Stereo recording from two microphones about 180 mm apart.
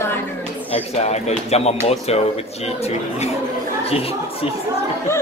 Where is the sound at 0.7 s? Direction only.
35° left (ahead or behind).